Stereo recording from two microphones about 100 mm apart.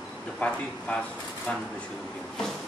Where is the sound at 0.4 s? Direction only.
15° left (ahead or behind).